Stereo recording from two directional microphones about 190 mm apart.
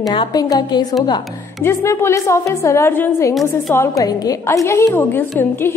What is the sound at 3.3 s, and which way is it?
Speech, centre (ahead or behind).